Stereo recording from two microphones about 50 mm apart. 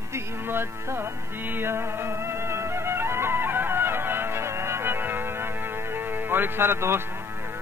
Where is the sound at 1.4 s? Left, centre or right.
Right.